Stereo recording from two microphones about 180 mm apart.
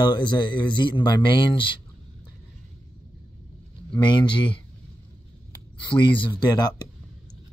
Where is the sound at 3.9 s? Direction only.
25° left (ahead or behind).